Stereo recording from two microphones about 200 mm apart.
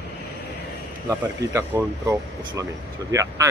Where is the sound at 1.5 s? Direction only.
15° right (ahead or behind).